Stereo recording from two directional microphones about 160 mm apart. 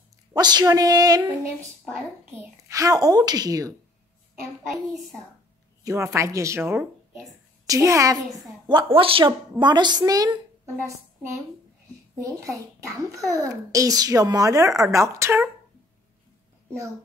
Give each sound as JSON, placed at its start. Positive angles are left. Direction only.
{"t": 0.3, "sound": "a child's voice", "side_deg": -25}
{"t": 2.7, "sound": "a child's voice", "side_deg": -20}
{"t": 5.9, "sound": "speech", "side_deg": -20}
{"t": 8.9, "sound": "a child's voice", "side_deg": -35}
{"t": 12.2, "sound": "a child's voice", "side_deg": -20}